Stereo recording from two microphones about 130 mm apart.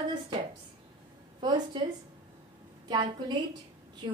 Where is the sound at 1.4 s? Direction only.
35° right (ahead or behind).